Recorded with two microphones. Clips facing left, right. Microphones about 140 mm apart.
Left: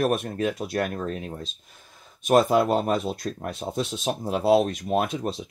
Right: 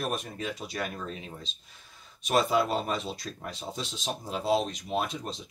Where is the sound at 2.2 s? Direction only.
50° left (ahead or behind).